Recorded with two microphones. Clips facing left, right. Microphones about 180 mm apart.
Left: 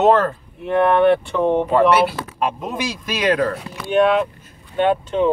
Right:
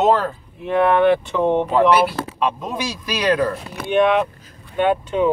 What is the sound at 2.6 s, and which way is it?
Speech, 55° left (ahead or behind).